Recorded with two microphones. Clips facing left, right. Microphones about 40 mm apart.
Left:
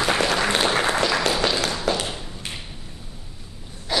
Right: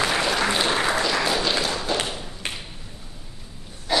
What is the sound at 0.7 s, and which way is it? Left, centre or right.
Applause, left.